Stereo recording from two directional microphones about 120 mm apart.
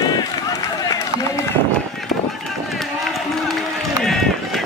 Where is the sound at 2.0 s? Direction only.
Centre (ahead or behind).